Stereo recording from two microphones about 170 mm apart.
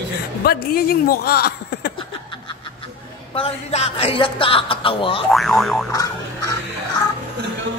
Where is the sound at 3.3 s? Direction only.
35° left (ahead or behind).